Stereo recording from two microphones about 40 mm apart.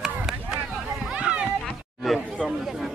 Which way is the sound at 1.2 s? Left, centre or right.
Right.